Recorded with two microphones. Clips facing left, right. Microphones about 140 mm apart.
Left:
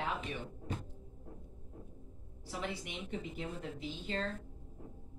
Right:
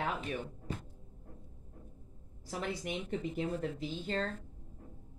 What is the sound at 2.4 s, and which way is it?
Speech, 45° right (ahead or behind).